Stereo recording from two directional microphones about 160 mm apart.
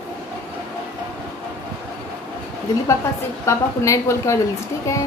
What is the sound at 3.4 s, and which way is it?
Speech, 20° left (ahead or behind).